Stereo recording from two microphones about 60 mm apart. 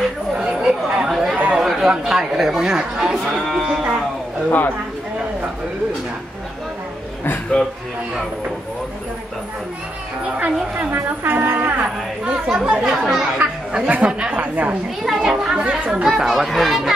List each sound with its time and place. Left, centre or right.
0.4 s chatter: centre
1.6 s speech: centre
4.5 s speech: left
10.8 s speech: right
12.3 s speech: centre
13.4 s speech: right
15.1 s speech: centre
16.1 s speech: centre